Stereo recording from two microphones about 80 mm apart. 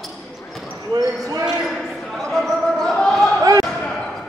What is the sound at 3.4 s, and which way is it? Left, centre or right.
Basketball bounce, right.